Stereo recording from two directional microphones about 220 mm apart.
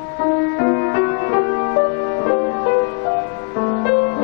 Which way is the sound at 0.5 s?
25° left (ahead or behind).